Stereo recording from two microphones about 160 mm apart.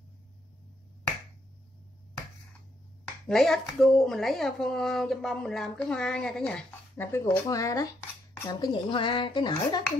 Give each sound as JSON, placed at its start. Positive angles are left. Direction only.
{"t": 3.3, "sound": "a woman's voice", "side_deg": 5}